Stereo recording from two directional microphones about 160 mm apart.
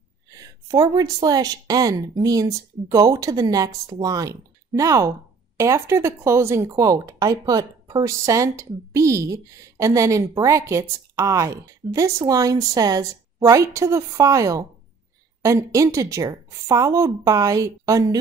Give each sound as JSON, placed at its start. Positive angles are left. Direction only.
{"t": 0.3, "sound": "speech", "side_deg": -25}